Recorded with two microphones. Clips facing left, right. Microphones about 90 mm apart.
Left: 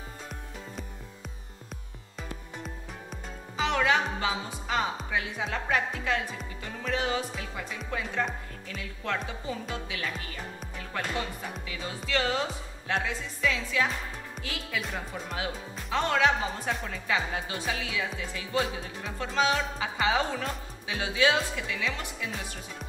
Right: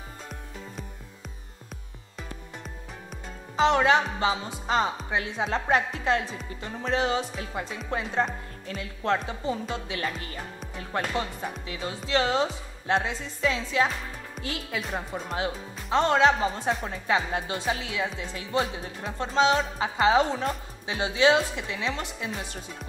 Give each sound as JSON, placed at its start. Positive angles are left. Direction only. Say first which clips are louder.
{"t": 3.5, "sound": "speech", "louder": "right 5 dB", "side_deg": -30}
{"t": 9.5, "sound": "music", "louder": "right 6 dB", "side_deg": -30}
{"t": 10.8, "sound": "speech", "louder": "right 4 dB", "side_deg": -35}
{"t": 11.6, "sound": "music", "louder": "right 3 dB", "side_deg": -35}
{"t": 14.4, "sound": "speech", "louder": "right 3 dB", "side_deg": -30}